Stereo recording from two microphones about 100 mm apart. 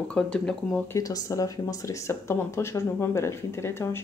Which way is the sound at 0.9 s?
35° left (ahead or behind).